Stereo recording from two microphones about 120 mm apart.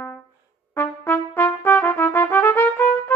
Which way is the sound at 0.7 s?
20° left (ahead or behind).